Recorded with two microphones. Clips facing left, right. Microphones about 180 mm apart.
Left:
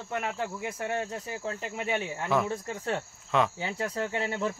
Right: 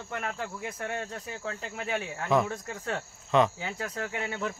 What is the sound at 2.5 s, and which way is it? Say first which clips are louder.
Speech: left 3 dB; 25° left (ahead or behind).